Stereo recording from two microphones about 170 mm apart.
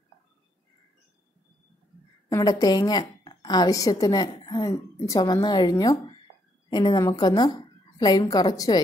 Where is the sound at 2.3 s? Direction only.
20° left (ahead or behind).